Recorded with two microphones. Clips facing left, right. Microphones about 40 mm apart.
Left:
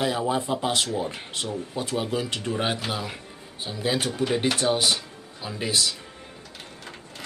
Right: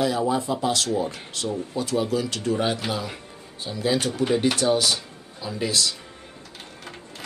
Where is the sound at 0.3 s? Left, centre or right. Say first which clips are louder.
Right 1 dB; left.